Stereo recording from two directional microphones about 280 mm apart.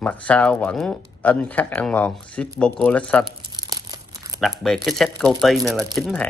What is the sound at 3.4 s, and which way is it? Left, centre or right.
Crumpling, centre.